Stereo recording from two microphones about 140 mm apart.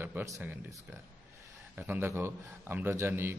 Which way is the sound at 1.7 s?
15° right (ahead or behind).